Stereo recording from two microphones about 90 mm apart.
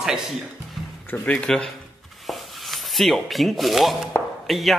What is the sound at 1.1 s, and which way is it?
Speech, 15° left (ahead or behind).